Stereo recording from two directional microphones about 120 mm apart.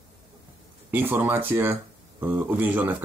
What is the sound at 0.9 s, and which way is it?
Speech, 15° right (ahead or behind).